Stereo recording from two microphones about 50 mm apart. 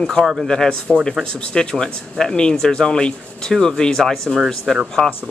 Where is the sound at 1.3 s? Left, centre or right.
Centre.